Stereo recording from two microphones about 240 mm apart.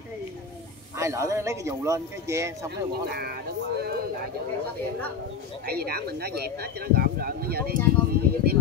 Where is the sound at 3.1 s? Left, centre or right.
Right.